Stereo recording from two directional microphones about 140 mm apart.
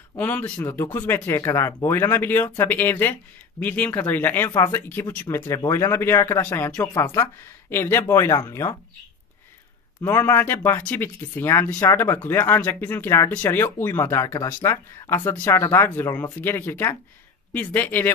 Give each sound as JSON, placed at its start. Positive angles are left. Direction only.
{"t": 0.2, "sound": "speech", "side_deg": 15}
{"t": 10.0, "sound": "speech", "side_deg": 15}